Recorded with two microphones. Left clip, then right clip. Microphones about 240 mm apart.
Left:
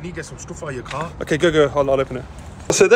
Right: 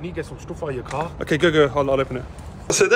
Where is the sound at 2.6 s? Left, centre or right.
Centre.